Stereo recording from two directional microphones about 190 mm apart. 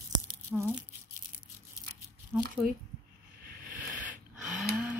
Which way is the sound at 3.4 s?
55° right (ahead or behind).